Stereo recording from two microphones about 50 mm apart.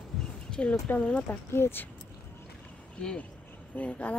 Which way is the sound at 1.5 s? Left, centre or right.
Left.